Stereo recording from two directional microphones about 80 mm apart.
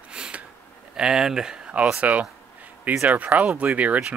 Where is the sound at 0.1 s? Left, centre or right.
Centre.